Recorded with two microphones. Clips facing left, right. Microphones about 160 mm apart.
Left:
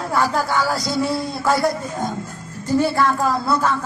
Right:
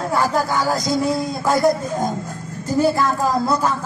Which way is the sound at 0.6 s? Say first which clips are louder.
Right 1 dB; 45° right (ahead or behind).